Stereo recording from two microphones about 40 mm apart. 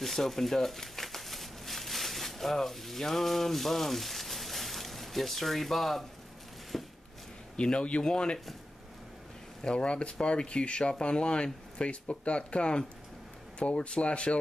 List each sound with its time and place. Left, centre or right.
0.0 s crumpling: centre
6.7 s a sound: centre
7.5 s speech: left
9.6 s speech: left